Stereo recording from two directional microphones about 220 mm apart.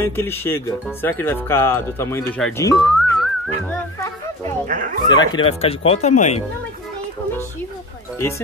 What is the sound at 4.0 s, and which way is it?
Music, 15° left (ahead or behind).